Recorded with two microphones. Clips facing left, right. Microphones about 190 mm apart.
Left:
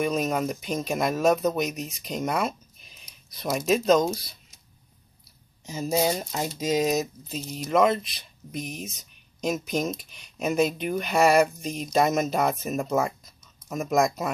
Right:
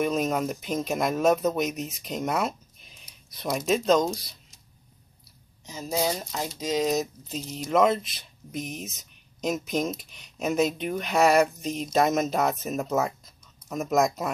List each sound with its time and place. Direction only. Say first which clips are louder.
0.0 s speech: even; centre (ahead or behind)
6.0 s speech: left 2 dB; 10° left (ahead or behind)